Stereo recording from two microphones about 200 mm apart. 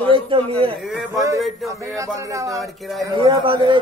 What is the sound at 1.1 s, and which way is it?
A man's voice, 15° right (ahead or behind).